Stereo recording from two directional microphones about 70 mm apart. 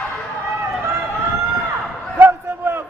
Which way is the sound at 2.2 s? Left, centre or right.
Right.